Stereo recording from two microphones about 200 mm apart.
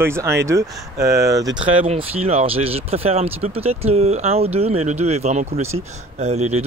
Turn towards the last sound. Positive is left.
turn(degrees=-35)  # may be behind; listen again after turning